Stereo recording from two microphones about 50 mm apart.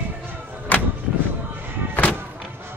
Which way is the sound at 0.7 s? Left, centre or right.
Left.